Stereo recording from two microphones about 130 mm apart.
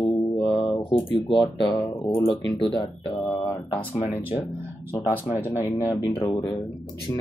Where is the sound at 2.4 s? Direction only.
Centre (ahead or behind).